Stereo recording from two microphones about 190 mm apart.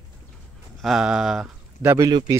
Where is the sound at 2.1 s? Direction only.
20° right (ahead or behind).